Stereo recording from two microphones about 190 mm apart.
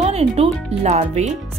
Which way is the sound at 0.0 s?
35° right (ahead or behind).